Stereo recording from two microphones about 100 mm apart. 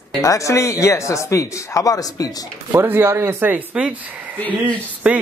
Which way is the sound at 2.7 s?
20° right (ahead or behind).